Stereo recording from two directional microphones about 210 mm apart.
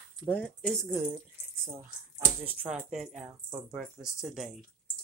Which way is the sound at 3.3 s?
10° right (ahead or behind).